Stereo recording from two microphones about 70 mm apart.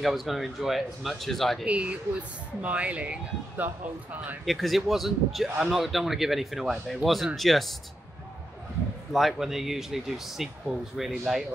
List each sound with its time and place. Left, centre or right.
0.0 s a man's voice: centre
1.7 s speech: centre
4.5 s a man's voice: centre
9.1 s a man's voice: centre